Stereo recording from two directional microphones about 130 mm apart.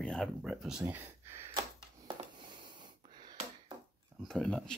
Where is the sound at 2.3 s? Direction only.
35° right (ahead or behind).